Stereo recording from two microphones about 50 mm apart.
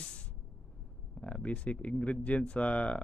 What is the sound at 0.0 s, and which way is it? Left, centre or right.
Vehicle, centre.